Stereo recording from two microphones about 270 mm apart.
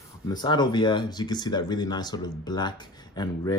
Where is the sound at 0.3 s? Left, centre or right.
Centre.